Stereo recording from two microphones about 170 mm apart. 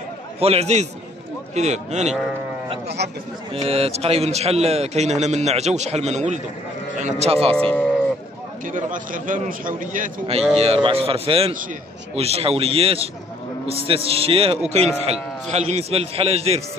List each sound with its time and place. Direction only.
0.4 s a man's voice: 40° right (ahead or behind)
3.5 s a man's voice: 35° right (ahead or behind)
7.5 s speech: 5° left (ahead or behind)
8.7 s a man's voice: 50° right (ahead or behind)
10.5 s a man's voice: 35° right (ahead or behind)